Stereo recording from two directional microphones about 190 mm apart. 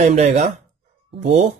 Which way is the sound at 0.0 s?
35° right (ahead or behind).